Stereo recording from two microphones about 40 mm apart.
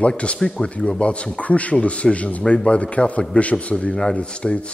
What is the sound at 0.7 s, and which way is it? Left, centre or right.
Speech, left.